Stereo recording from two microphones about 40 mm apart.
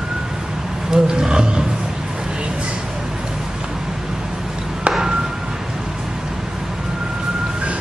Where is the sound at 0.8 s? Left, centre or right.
Centre.